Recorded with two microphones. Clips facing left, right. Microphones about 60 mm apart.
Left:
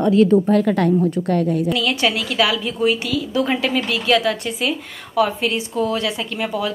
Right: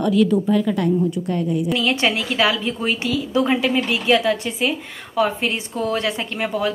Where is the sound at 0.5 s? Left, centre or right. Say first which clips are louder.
Left 3 dB; left.